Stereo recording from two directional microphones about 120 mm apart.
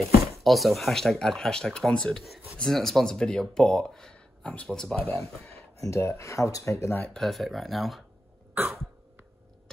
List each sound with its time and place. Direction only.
0.4 s speech: centre (ahead or behind)
5.9 s speech: 25° left (ahead or behind)
7.2 s speech: centre (ahead or behind)
8.5 s cough: 15° right (ahead or behind)